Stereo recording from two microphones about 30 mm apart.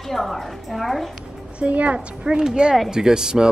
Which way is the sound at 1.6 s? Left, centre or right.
Right.